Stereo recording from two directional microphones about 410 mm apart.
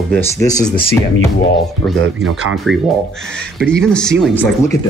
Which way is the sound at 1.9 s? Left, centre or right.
Centre.